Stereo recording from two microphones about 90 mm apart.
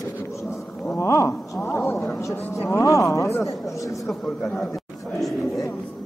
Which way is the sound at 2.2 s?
30° left (ahead or behind).